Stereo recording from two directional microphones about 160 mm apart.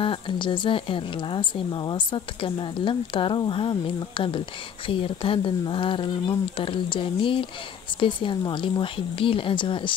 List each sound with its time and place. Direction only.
0.0 s speech: 30° left (ahead or behind)